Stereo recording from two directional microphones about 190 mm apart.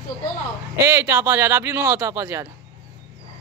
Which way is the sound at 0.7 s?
15° right (ahead or behind).